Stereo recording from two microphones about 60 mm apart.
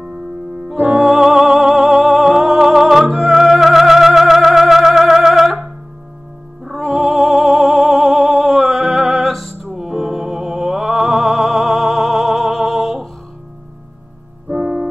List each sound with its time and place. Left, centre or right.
0.7 s music: centre
6.6 s music: centre
14.5 s music: right